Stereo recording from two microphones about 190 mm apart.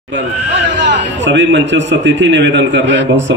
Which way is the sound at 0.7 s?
70° right (ahead or behind).